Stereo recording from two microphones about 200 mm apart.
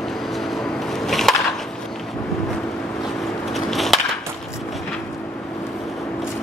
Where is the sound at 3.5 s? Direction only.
Centre (ahead or behind).